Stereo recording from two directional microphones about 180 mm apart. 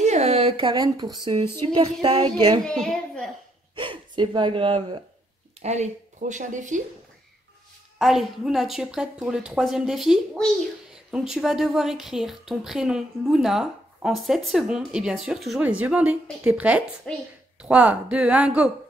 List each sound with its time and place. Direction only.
0.0 s a sound: 40° right (ahead or behind)
1.4 s a sound: 15° left (ahead or behind)
1.7 s music: 25° right (ahead or behind)
2.6 s a sound: 5° left (ahead or behind)
3.7 s speech: 25° right (ahead or behind)
5.6 s speech: 40° right (ahead or behind)
8.0 s a woman's voice: centre (ahead or behind)
17.1 s a woman's voice: 5° left (ahead or behind)
17.6 s speech: 5° right (ahead or behind)